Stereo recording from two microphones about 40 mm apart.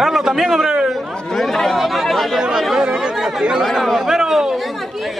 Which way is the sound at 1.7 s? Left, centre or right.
Centre.